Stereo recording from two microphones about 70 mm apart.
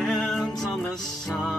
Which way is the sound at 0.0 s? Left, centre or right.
Centre.